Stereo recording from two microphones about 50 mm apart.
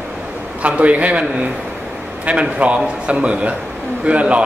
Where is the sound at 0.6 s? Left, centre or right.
Right.